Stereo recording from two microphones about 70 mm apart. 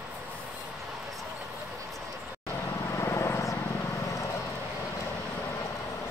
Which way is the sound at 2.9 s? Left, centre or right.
Left.